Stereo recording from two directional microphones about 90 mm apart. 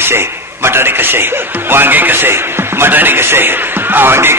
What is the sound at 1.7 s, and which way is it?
A man's voice, 20° right (ahead or behind).